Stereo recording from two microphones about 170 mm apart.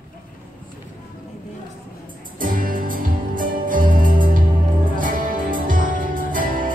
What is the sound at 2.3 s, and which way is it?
Music, 55° right (ahead or behind).